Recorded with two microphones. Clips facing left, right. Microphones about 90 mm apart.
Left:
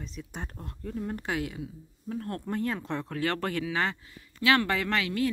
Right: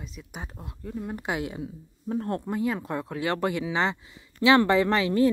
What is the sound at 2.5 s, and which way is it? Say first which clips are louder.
Speech: right 3 dB; 10° right (ahead or behind).